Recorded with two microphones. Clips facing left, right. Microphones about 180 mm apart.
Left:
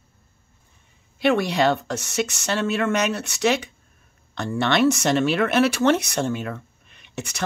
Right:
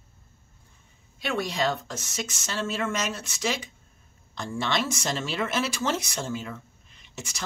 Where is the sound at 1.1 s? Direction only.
70° left (ahead or behind).